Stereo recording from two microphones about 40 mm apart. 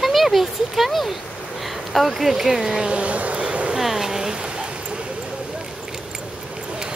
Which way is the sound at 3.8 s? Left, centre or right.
Centre.